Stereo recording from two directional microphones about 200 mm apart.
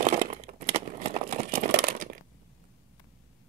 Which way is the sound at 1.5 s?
45° right (ahead or behind).